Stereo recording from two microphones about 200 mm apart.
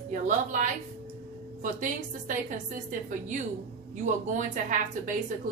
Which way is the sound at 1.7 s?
40° right (ahead or behind).